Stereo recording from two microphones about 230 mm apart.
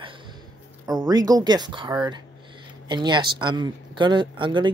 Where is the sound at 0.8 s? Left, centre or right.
Centre.